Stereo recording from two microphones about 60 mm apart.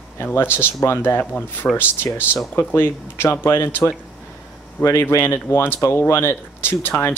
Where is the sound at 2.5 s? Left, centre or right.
Left.